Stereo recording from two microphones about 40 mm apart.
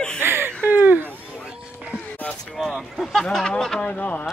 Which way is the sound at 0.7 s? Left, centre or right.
Right.